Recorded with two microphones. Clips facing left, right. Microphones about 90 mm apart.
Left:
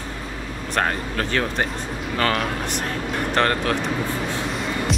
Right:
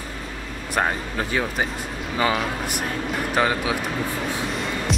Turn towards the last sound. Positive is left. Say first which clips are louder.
# left 1 dB
turn(degrees=0)  # may be behind; listen again after turning